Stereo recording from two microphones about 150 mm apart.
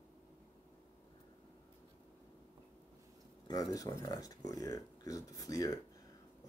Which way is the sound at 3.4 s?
25° left (ahead or behind).